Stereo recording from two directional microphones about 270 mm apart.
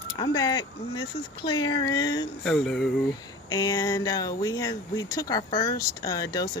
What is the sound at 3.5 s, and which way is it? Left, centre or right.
Speech, centre.